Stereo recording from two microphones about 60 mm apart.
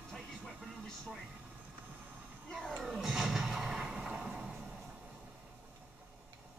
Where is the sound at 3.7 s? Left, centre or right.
Centre.